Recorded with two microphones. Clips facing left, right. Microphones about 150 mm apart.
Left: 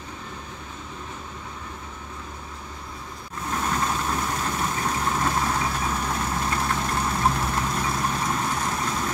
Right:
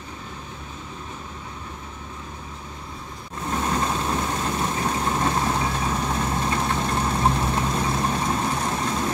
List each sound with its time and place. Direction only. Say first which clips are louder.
3.6 s vehicle: right 1 dB; 25° right (ahead or behind)